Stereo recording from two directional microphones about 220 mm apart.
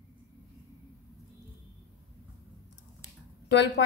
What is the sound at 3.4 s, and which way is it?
Speech, 50° left (ahead or behind).